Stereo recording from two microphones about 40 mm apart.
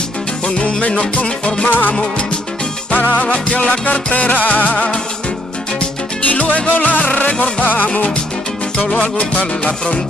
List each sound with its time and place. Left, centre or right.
0.6 s music: left
1.7 s music: left
3.2 s music: left
4.6 s music: left
6.2 s music: left
7.6 s music: left
8.9 s music: left